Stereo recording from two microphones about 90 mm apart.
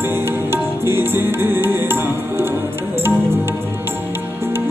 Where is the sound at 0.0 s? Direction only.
25° right (ahead or behind).